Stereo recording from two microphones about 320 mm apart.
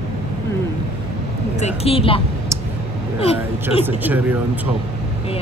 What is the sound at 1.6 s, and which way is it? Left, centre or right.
Speech, centre.